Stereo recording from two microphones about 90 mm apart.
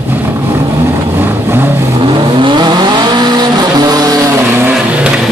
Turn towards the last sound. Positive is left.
turn(degrees=-20)  # may be behind; listen again after turning